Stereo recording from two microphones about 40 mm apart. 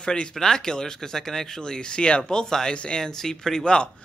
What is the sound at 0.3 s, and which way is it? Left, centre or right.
Speech, centre.